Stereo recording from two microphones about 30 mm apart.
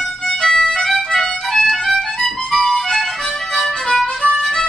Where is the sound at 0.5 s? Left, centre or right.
Left.